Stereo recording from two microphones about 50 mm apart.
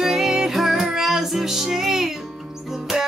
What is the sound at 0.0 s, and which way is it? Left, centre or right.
Music, centre.